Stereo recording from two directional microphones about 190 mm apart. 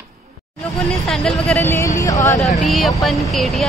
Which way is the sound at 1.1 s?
5° left (ahead or behind).